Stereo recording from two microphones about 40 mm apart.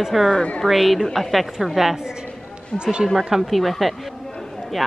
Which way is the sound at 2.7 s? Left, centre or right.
Right.